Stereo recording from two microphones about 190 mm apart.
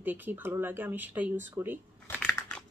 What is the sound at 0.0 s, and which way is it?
Speech, 10° right (ahead or behind).